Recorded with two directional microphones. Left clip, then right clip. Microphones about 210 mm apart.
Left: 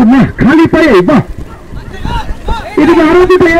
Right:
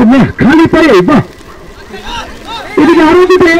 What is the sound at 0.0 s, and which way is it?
Speech, 20° left (ahead or behind).